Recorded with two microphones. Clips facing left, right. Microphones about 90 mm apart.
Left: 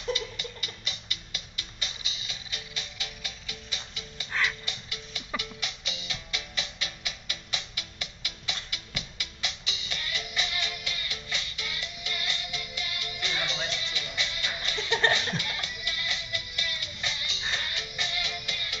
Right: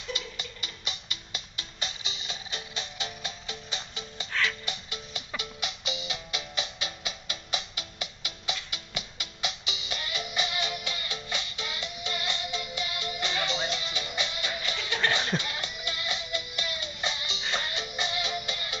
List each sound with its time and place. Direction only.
0.1 s music: 25° right (ahead or behind)
4.3 s music: 15° left (ahead or behind)
4.6 s music: 25° right (ahead or behind)
14.8 s laughter: 30° left (ahead or behind)
15.3 s music: 25° right (ahead or behind)